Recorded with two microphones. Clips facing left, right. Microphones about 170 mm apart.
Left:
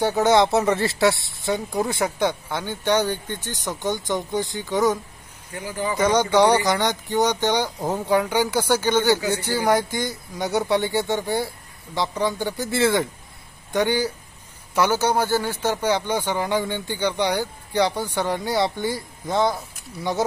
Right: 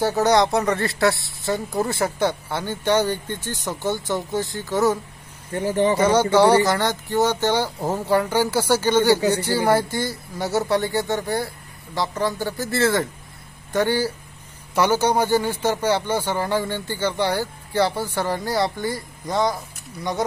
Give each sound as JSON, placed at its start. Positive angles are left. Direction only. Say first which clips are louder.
{"t": 0.0, "sound": "speech", "louder": "even", "side_deg": 0}
{"t": 5.5, "sound": "speech", "louder": "right 8 dB", "side_deg": -30}
{"t": 5.9, "sound": "speech", "louder": "left 2 dB", "side_deg": -10}
{"t": 12.7, "sound": "speech", "louder": "even", "side_deg": 20}
{"t": 13.7, "sound": "a man's voice", "louder": "right 1 dB", "side_deg": -5}